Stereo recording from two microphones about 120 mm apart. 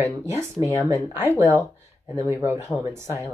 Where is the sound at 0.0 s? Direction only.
25° right (ahead or behind).